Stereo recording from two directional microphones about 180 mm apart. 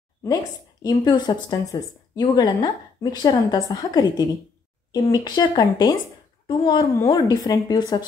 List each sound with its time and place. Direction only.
0.2 s a woman's voice: 20° left (ahead or behind)